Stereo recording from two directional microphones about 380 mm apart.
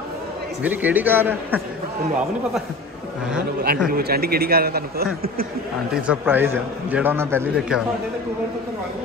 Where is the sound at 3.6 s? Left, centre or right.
Right.